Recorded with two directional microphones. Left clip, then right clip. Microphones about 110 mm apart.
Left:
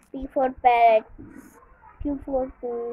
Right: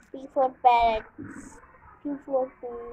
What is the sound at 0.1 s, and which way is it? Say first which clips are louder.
Speech: left 1 dB; 20° left (ahead or behind).